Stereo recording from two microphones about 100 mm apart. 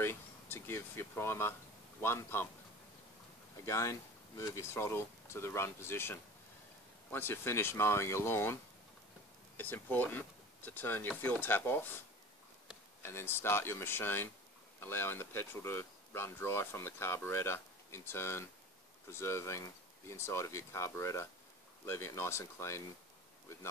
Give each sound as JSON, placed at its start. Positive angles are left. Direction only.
{"t": 0.0, "sound": "speech", "side_deg": 25}
{"t": 3.6, "sound": "speech", "side_deg": 30}
{"t": 9.6, "sound": "speech", "side_deg": 20}
{"t": 13.0, "sound": "speech", "side_deg": 25}